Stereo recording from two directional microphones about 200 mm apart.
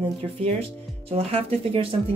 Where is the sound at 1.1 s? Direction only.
30° right (ahead or behind).